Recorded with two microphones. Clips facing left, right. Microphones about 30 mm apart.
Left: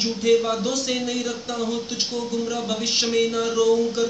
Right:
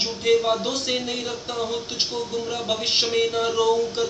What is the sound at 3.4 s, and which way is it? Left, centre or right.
Speech, right.